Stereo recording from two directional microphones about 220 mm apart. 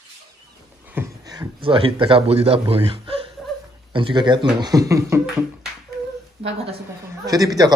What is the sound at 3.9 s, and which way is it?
Speech, 20° right (ahead or behind).